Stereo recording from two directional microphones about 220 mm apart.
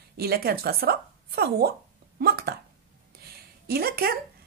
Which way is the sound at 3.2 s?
45° right (ahead or behind).